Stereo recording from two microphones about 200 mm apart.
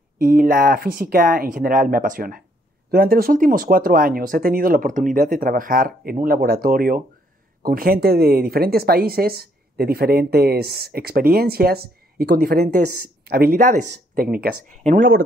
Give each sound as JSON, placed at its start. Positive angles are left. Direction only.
{"t": 0.2, "sound": "speech", "side_deg": -45}